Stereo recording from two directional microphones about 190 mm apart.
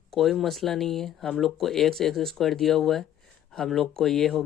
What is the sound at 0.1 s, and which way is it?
Speech, centre (ahead or behind).